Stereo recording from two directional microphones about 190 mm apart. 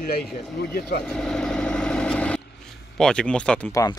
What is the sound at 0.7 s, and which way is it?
Speech, 55° left (ahead or behind).